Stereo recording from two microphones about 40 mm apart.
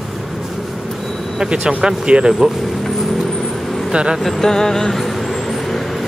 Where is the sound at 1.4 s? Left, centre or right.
Right.